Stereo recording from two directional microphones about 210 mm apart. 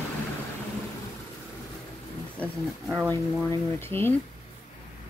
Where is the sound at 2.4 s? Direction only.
5° right (ahead or behind).